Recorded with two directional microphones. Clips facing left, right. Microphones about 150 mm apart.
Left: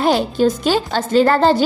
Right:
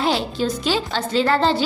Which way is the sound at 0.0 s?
50° left (ahead or behind).